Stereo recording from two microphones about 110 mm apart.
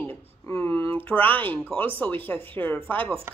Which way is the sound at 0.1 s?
25° left (ahead or behind).